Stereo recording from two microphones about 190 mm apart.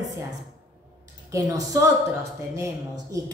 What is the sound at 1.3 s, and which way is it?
A woman's voice, 15° right (ahead or behind).